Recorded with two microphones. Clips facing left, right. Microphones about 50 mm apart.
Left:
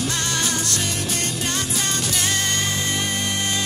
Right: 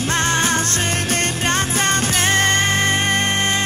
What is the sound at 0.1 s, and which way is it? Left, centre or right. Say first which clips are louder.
Music: right 7 dB; right.